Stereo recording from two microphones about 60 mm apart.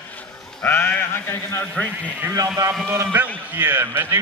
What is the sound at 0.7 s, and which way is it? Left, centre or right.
Speech, left.